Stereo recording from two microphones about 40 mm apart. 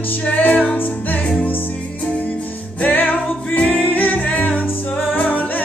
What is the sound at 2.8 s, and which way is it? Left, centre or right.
Music, left.